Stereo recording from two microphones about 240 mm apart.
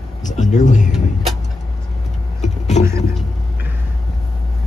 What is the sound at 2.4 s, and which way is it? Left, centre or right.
Vehicle, left.